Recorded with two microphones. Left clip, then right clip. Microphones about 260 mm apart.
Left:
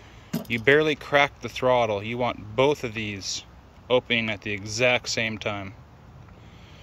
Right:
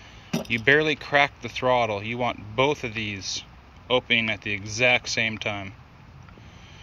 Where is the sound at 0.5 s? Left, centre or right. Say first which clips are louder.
Even; centre.